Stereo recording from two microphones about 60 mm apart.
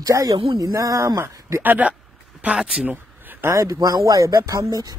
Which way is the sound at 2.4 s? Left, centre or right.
Centre.